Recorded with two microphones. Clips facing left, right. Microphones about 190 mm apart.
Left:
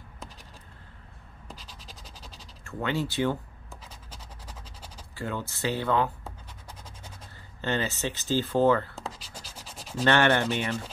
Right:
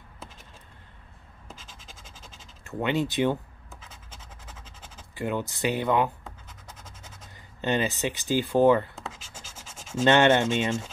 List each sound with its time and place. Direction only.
1.6 s scratch: 45° right (ahead or behind)
1.9 s a sound: 40° left (ahead or behind)
2.6 s rub: 20° right (ahead or behind)
5.1 s speech: 20° right (ahead or behind)
7.6 s speech: 15° right (ahead or behind)
9.0 s scratch: 35° left (ahead or behind)
9.6 s rub: 35° left (ahead or behind)
10.0 s rub: 20° right (ahead or behind)